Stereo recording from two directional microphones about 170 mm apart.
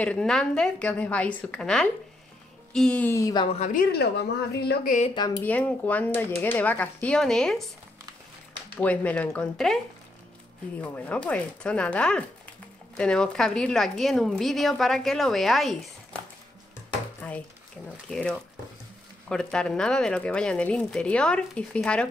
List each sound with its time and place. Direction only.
0.0 s speech: 5° left (ahead or behind)
3.5 s a woman's voice: 45° left (ahead or behind)
3.9 s speech: 70° left (ahead or behind)
5.1 s speech: 25° left (ahead or behind)
5.4 s speech: 10° left (ahead or behind)
8.7 s speech: 10° left (ahead or behind)
10.8 s a woman's voice: 10° left (ahead or behind)
17.2 s a sound: 10° left (ahead or behind)
17.8 s a woman's voice: 5° left (ahead or behind)